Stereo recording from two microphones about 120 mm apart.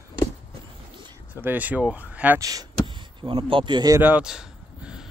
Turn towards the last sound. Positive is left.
turn(degrees=-5)  # may be behind; listen again after turning